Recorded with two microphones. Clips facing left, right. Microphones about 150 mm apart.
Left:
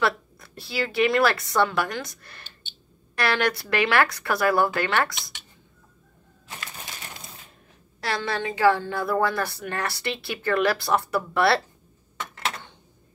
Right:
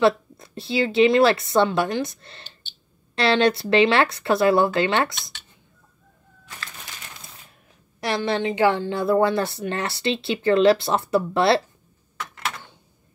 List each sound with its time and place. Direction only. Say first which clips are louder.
0.0 s a woman's voice: right 7 dB; 20° right (ahead or behind)
8.0 s a woman's voice: right 5 dB; 20° right (ahead or behind)